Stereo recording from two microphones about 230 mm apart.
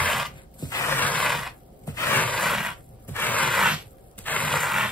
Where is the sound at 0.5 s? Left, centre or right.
Centre.